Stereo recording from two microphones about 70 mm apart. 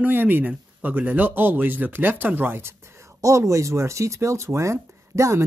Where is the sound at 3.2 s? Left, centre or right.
Right.